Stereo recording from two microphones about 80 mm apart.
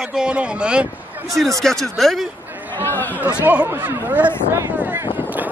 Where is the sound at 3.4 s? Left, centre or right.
Centre.